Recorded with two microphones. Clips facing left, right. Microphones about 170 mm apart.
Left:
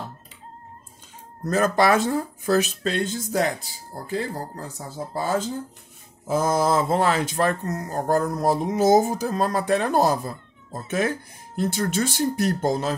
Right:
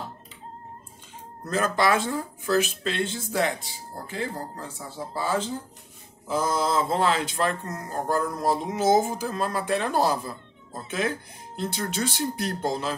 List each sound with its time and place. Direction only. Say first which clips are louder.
1.4 s speech: left 4 dB; 45° left (ahead or behind)